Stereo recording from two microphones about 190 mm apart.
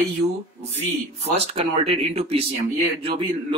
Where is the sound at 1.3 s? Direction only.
30° right (ahead or behind).